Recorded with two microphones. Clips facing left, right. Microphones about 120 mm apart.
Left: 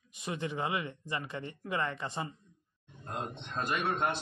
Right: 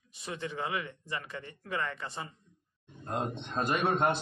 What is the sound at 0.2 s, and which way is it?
Speech, 20° left (ahead or behind).